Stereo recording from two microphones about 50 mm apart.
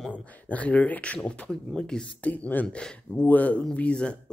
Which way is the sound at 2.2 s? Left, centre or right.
Left.